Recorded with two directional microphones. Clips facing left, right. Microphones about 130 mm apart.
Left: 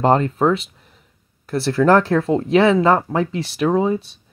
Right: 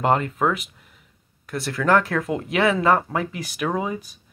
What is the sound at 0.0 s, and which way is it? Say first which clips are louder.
Speech: left 5 dB; 30° left (ahead or behind).